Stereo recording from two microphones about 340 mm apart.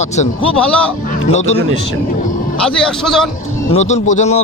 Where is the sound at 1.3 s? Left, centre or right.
Centre.